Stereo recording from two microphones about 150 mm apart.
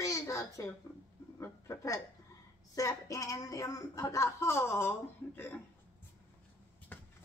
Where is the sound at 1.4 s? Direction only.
20° left (ahead or behind).